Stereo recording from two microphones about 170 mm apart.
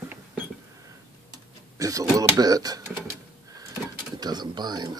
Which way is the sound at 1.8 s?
20° right (ahead or behind).